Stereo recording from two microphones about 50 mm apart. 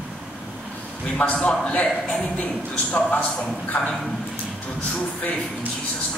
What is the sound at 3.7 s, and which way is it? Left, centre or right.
Speech, left.